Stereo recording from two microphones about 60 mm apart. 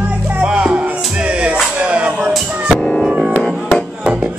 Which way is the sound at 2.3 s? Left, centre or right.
Centre.